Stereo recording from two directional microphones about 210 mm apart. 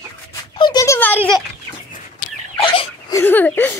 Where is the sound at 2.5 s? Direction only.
25° left (ahead or behind).